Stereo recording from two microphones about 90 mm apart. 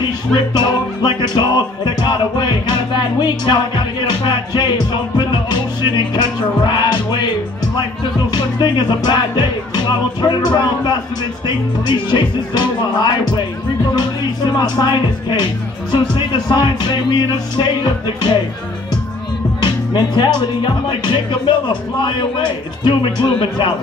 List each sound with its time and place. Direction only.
0.0 s music: 60° left (ahead or behind)
8.3 s music: 55° left (ahead or behind)
11.4 s speech: 60° left (ahead or behind)
13.9 s music: 55° left (ahead or behind)
15.9 s speech: 60° left (ahead or behind)
19.6 s speech: 55° left (ahead or behind); by 23.7 s 90° left